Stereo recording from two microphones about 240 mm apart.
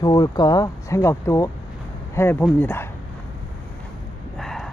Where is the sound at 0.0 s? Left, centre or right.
Centre.